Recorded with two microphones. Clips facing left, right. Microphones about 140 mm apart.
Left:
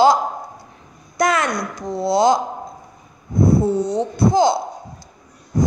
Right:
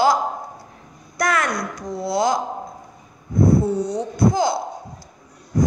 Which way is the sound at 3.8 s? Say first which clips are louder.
Left 1 dB; 25° left (ahead or behind).